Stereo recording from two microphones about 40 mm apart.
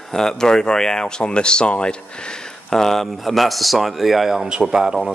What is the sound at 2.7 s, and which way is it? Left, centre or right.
Speech, centre.